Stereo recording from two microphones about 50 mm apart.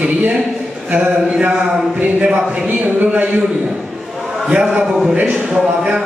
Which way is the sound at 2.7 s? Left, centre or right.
Right.